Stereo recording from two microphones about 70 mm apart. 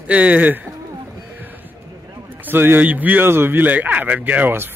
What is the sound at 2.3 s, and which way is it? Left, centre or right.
A man's voice, right.